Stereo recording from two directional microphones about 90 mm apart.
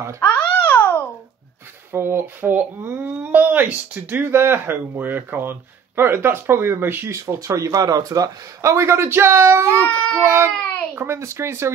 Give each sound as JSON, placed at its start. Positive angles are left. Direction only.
{"t": 0.2, "sound": "babbling", "side_deg": 20}
{"t": 1.9, "sound": "speech", "side_deg": -25}
{"t": 9.8, "sound": "speech", "side_deg": 15}
{"t": 10.2, "sound": "speech", "side_deg": -30}